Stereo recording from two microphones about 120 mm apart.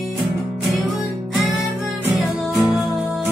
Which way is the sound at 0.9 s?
Centre (ahead or behind).